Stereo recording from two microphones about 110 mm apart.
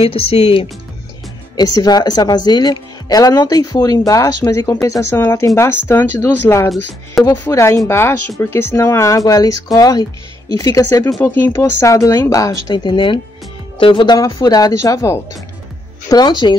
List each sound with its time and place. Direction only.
0.0 s speech: 60° left (ahead or behind)
1.6 s a woman's voice: 35° left (ahead or behind)
14.1 s speech: 35° left (ahead or behind)
16.1 s a woman's voice: 40° left (ahead or behind)